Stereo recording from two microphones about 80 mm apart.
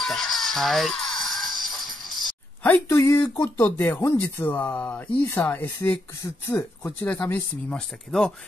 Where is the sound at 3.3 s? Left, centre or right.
Left.